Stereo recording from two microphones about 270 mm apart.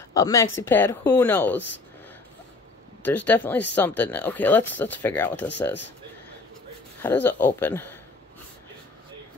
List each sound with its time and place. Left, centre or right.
0.1 s speech: centre
3.0 s speech: centre
7.0 s speech: centre